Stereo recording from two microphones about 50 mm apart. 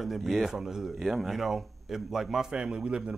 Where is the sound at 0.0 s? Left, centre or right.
Centre.